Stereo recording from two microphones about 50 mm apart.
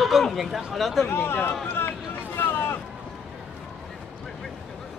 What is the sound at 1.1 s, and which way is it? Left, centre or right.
Speech, left.